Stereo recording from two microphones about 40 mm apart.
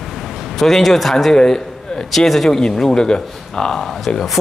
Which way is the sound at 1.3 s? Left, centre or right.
Centre.